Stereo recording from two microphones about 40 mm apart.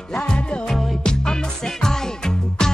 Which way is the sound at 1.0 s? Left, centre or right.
Centre.